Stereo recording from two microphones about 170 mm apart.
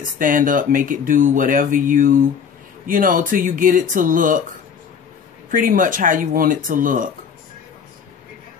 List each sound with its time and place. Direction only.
0.2 s speech: 50° right (ahead or behind)
5.5 s speech: 55° right (ahead or behind)